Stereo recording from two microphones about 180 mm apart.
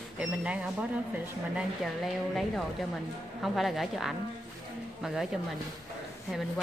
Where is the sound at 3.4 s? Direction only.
Centre (ahead or behind).